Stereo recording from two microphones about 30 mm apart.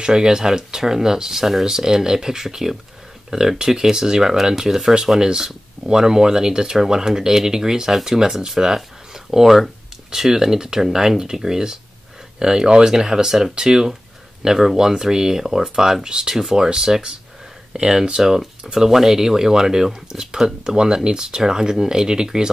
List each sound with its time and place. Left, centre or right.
0.0 s speech: right
18.2 s speech: centre